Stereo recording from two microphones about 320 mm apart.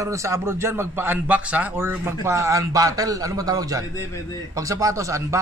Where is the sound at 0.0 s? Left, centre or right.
Centre.